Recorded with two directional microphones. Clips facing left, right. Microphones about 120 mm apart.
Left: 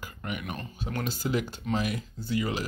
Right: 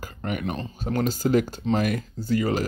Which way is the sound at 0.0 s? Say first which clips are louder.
Right 7 dB; 40° right (ahead or behind).